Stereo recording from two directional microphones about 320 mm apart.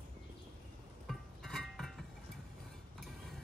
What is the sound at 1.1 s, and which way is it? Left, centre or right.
Music, centre.